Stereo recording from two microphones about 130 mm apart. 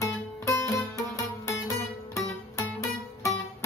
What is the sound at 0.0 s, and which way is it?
Music, 25° left (ahead or behind).